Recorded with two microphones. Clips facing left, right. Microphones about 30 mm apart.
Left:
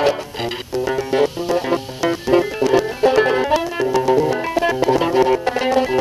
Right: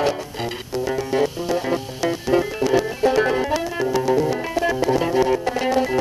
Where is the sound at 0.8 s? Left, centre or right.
Centre.